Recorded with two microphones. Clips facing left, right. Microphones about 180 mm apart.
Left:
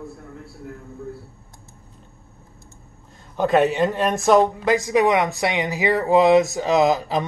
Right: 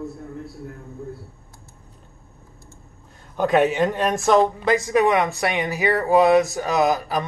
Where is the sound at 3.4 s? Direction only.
Centre (ahead or behind).